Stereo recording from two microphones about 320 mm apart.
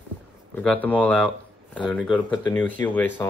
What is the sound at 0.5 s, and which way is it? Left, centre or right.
Speech, centre.